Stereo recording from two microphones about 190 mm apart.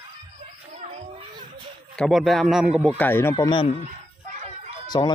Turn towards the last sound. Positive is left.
turn(degrees=20)  # may be behind; listen again after turning